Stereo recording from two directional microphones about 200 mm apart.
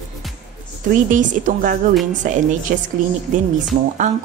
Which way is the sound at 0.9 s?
40° right (ahead or behind).